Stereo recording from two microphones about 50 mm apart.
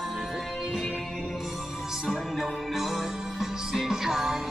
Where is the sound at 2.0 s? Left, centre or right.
Centre.